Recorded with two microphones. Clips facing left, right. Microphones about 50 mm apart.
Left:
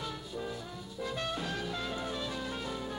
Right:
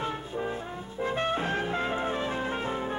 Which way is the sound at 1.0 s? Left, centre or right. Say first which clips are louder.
Right 8 dB; right.